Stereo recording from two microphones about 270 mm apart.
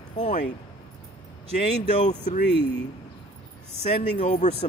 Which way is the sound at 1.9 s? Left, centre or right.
Left.